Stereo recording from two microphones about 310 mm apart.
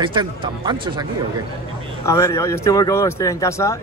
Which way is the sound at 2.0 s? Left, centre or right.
Centre.